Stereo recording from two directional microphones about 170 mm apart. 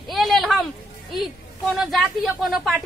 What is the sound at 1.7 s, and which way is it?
A woman's voice, centre (ahead or behind).